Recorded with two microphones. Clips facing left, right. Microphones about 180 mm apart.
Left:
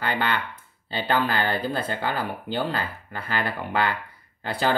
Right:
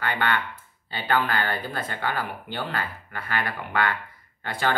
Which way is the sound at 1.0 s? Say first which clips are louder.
Left 1 dB; 30° left (ahead or behind).